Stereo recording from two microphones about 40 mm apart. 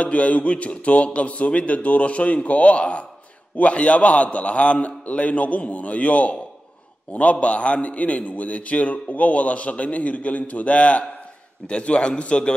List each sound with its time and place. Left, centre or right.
0.0 s a man's voice: left